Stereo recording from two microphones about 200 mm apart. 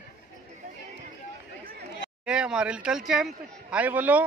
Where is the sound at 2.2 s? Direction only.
5° right (ahead or behind).